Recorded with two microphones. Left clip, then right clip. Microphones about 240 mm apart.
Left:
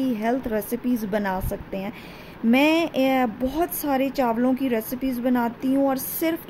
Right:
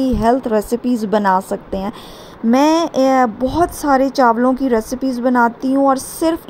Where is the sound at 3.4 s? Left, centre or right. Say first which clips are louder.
Right 9 dB; centre.